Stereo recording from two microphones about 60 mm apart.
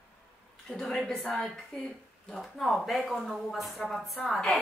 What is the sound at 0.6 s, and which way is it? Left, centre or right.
A woman's voice, centre.